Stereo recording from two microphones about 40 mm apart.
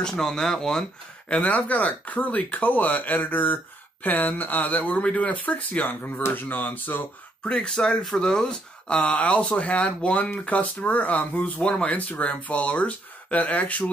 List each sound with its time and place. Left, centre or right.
0.0 s speech: centre
1.3 s speech: left
7.4 s speech: centre; by 11.6 s left
11.6 s speech: left